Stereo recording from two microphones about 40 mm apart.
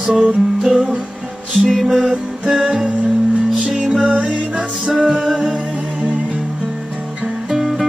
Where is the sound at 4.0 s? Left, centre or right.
Right.